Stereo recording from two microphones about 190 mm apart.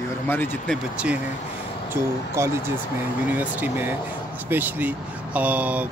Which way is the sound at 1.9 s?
15° right (ahead or behind).